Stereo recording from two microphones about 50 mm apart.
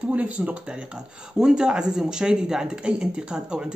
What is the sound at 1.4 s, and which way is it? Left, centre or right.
Speech, centre.